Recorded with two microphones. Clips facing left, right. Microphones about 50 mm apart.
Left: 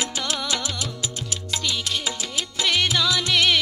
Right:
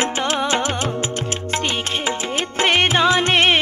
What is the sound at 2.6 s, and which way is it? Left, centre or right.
Music, right.